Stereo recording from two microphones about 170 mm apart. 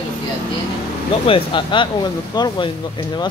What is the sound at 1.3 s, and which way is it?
Speech, 30° left (ahead or behind).